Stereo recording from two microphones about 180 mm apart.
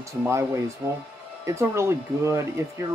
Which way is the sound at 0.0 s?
15° right (ahead or behind).